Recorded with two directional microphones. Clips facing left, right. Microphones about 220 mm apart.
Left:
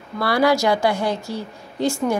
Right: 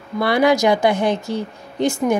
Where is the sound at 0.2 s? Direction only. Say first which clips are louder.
Right 2 dB; 20° right (ahead or behind).